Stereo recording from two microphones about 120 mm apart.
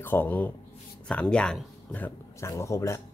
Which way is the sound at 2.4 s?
25° left (ahead or behind).